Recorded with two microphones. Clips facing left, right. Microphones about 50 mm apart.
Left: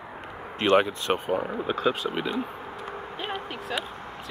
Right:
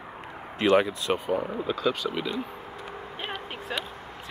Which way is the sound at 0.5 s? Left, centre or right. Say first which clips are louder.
Even; left.